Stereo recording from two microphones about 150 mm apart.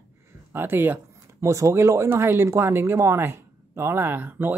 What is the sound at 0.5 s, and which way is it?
Speech, 15° right (ahead or behind).